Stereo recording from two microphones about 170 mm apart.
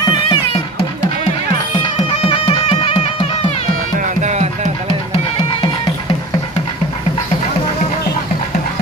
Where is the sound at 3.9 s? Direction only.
45° right (ahead or behind).